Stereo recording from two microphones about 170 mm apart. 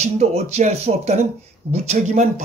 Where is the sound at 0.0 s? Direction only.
40° right (ahead or behind).